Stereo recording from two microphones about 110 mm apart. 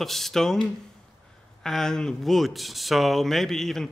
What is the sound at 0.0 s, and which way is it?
Speech, centre (ahead or behind).